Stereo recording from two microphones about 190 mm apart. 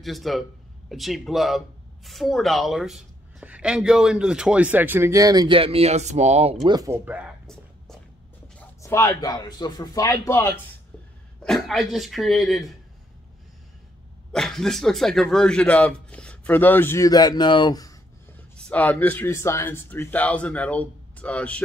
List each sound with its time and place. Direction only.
0.0 s a man's voice: centre (ahead or behind); by 6.6 s 35° right (ahead or behind)
6.6 s speech: 20° right (ahead or behind)
7.1 s whispering: centre (ahead or behind)
8.5 s speech: 15° left (ahead or behind)
11.4 s speech: centre (ahead or behind)
14.3 s speech: centre (ahead or behind); by 17.9 s 20° left (ahead or behind)
18.6 s speech: 5° left (ahead or behind)